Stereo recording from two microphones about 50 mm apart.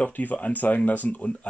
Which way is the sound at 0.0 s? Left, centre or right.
Left.